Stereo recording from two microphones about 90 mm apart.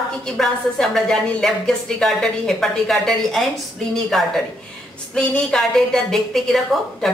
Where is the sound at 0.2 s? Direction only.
5° left (ahead or behind).